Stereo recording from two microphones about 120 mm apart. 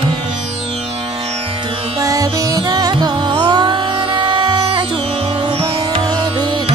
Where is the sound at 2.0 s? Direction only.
30° right (ahead or behind).